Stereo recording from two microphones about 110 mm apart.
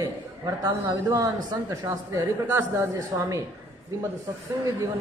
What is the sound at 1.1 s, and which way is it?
Speech, 30° right (ahead or behind).